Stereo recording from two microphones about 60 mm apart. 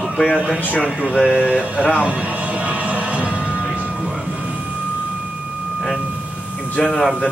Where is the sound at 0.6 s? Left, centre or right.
Left.